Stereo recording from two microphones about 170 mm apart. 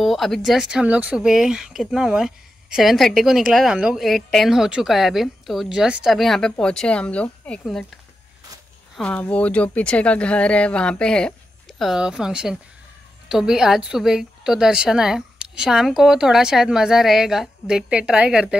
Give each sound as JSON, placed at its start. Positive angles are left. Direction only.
{"t": 0.0, "sound": "speech", "side_deg": 0}
{"t": 8.9, "sound": "speech", "side_deg": 5}